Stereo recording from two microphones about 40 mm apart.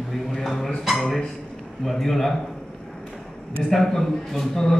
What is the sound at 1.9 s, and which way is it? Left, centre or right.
Speech, centre.